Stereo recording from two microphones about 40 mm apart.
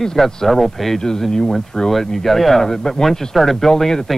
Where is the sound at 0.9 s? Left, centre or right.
Centre.